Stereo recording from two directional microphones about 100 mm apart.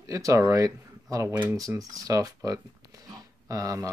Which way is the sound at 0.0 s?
35° right (ahead or behind).